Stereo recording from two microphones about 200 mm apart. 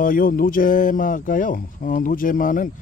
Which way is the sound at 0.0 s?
45° left (ahead or behind).